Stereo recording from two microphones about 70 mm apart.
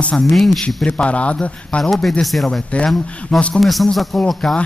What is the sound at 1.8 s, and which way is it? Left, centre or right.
Speech, centre.